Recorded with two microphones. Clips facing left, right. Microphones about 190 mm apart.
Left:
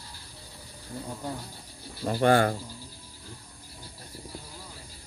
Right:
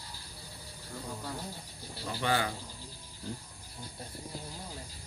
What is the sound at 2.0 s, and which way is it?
Speech, 50° left (ahead or behind).